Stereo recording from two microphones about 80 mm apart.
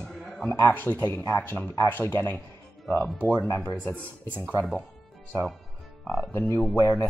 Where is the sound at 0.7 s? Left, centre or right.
Left.